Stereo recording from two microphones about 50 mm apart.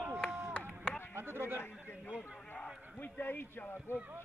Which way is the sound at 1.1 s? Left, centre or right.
Right.